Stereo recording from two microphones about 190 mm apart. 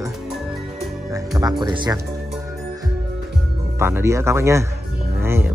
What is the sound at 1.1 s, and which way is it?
Speech, 15° right (ahead or behind).